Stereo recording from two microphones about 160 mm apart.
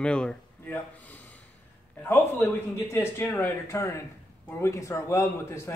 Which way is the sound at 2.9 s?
15° left (ahead or behind).